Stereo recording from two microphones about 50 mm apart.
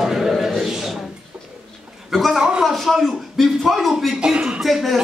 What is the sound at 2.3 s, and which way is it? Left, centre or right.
A man's voice, centre.